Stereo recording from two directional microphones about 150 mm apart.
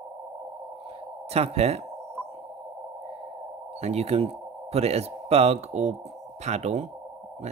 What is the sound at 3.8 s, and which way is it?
Speech, 45° right (ahead or behind).